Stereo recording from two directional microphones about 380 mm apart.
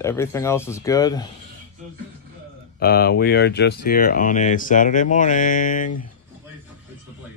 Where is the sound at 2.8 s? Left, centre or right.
Left.